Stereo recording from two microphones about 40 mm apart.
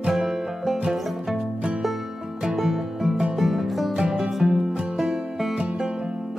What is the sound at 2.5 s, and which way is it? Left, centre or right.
Music, centre.